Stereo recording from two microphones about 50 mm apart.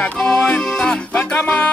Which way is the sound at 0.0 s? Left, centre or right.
Left.